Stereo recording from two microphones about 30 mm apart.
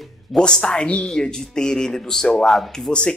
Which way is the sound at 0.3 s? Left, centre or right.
Left.